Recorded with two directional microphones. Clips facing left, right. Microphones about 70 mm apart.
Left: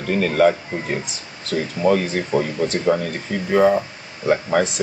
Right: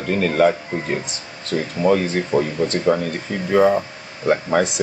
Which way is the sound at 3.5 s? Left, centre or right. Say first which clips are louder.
Even; centre.